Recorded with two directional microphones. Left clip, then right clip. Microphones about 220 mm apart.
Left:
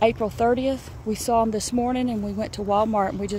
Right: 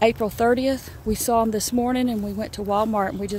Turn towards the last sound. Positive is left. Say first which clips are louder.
# even
turn(degrees=-10)  # may be behind; listen again after turning